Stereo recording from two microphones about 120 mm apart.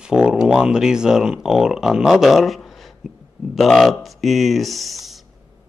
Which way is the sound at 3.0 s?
Centre (ahead or behind).